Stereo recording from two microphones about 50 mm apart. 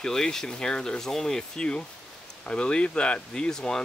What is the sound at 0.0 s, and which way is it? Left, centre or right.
Speech, centre.